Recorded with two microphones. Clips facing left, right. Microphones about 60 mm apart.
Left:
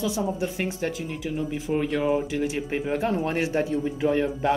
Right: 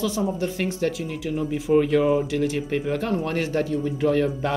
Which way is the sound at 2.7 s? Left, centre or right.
Left.